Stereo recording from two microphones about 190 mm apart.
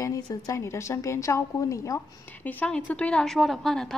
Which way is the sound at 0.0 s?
15° left (ahead or behind).